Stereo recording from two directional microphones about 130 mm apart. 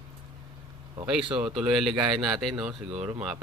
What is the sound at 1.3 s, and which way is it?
Speech, 5° right (ahead or behind).